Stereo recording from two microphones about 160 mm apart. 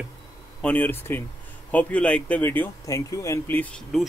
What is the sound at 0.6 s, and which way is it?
Speech, 10° left (ahead or behind).